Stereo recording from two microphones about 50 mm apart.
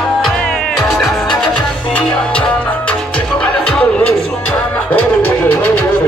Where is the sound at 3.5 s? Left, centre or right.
Centre.